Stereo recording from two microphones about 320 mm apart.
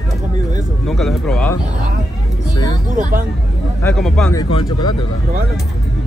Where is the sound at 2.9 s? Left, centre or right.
Right.